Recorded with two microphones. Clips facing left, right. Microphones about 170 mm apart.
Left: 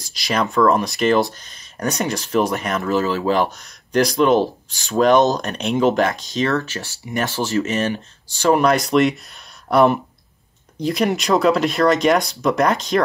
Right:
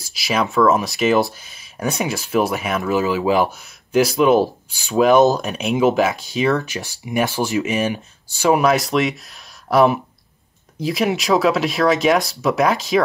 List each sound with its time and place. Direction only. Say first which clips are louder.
0.0 s speech: right 1 dB; 5° right (ahead or behind)